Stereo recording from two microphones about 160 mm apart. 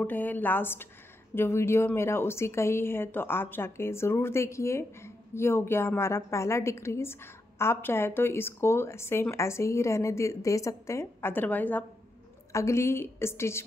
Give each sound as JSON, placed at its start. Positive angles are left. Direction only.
{"t": 0.0, "sound": "a woman's voice", "side_deg": 10}